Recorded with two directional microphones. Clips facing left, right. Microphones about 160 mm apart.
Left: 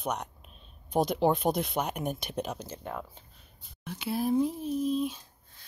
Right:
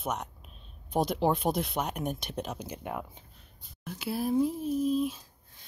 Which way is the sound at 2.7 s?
15° right (ahead or behind).